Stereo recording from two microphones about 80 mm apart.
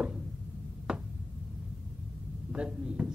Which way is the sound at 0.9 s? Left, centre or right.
Centre.